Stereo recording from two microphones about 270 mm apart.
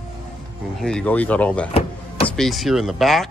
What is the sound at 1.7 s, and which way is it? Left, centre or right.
Power windows, left.